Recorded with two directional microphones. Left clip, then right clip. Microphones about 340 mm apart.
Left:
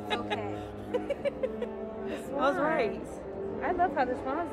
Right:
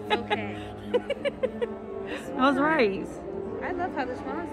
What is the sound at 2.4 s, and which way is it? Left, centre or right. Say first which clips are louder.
Speech: right 5 dB; right.